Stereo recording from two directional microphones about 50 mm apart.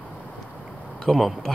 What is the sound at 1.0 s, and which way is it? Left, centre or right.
Speech, centre.